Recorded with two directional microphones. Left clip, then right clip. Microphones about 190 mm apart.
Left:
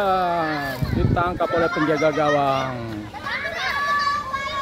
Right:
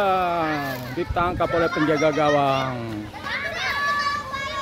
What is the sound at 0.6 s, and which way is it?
Speech, 5° right (ahead or behind).